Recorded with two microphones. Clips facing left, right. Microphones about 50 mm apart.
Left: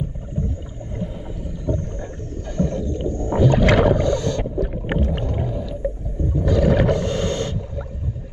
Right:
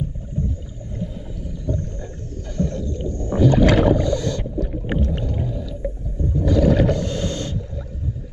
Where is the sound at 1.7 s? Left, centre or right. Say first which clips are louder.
Left 2 dB; left.